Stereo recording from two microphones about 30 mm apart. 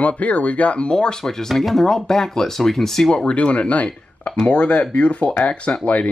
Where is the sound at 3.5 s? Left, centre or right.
Left.